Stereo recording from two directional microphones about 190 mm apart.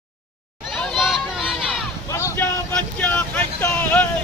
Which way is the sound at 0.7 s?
Centre (ahead or behind).